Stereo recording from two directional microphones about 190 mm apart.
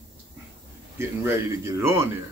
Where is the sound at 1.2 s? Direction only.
15° right (ahead or behind).